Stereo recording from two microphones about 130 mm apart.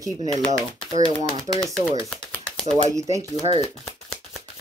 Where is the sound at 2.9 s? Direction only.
25° right (ahead or behind).